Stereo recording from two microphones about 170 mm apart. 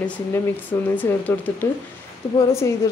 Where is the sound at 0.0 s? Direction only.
10° left (ahead or behind).